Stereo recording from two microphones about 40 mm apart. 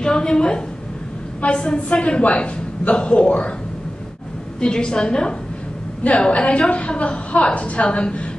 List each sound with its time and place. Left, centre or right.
0.0 s a woman's voice: centre
1.4 s a woman's voice: left
4.6 s a woman's voice: left